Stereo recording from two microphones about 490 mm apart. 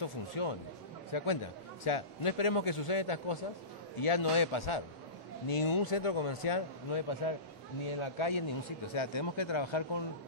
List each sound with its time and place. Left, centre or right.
0.0 s a man's voice: left